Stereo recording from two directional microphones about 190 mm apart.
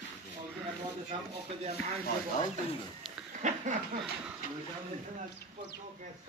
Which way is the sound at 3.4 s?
40° right (ahead or behind).